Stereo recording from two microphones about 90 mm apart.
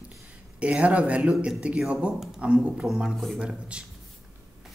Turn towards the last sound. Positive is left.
turn(degrees=-15)  # may be behind; listen again after turning